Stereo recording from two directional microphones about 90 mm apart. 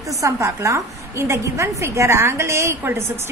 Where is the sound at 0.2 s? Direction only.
35° right (ahead or behind).